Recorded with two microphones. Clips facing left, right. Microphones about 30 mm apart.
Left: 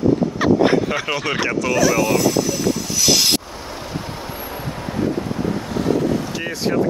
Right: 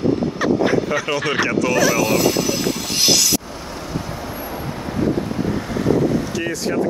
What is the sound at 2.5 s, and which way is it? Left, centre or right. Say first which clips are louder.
Train: left 1 dB; right.